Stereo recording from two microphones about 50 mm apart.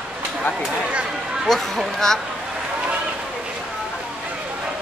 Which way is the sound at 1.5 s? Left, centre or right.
Centre.